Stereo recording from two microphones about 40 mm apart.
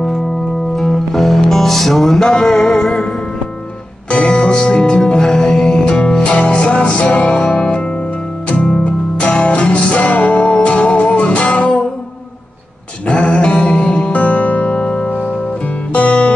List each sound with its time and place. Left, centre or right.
0.7 s music: centre
4.1 s speech: left
5.9 s music: left
13.0 s music: left
14.1 s music: left
14.7 s music: left